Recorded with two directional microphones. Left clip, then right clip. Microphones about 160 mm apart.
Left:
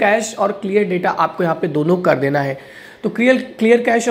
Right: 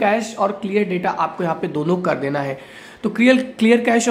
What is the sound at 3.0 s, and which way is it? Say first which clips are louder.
Speech: left 1 dB; 10° right (ahead or behind).